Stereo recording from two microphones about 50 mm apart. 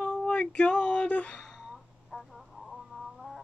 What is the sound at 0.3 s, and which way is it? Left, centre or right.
Speech, left.